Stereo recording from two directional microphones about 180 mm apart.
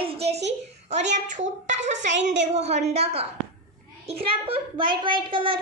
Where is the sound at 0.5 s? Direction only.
40° right (ahead or behind).